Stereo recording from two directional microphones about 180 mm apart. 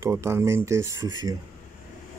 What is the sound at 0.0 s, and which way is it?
Speech, 15° right (ahead or behind).